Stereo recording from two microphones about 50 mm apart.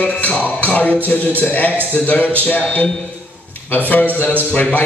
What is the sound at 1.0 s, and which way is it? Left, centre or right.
Speech, left.